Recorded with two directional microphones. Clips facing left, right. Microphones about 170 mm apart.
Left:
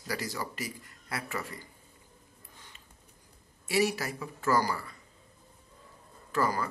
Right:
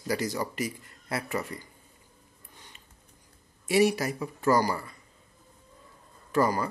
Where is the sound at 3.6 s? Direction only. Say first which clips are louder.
Right 5 dB; 15° right (ahead or behind).